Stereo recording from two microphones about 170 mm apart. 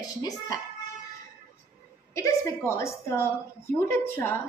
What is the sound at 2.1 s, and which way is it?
A woman's voice, 15° left (ahead or behind).